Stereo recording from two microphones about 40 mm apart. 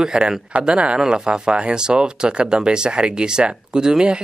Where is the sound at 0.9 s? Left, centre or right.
Centre.